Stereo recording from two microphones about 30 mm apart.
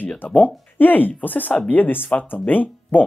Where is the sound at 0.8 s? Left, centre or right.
Left.